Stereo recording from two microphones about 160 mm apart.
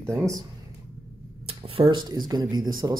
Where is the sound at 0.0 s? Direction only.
20° right (ahead or behind).